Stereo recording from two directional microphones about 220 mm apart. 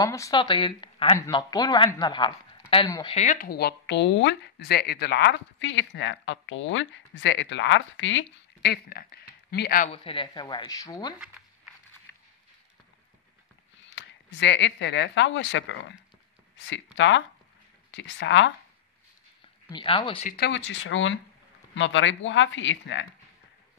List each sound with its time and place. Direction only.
0.0 s speech: 15° left (ahead or behind)
3.2 s speech: 35° left (ahead or behind)
9.9 s speech: 25° left (ahead or behind)
13.8 s speech: 55° left (ahead or behind)
19.7 s speech: 20° left (ahead or behind)
20.2 s speech: 45° left (ahead or behind)